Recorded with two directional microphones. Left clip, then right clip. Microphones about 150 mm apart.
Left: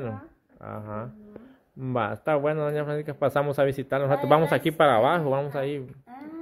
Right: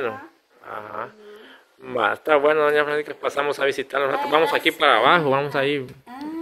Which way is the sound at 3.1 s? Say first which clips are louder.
Right 1 dB; 15° left (ahead or behind).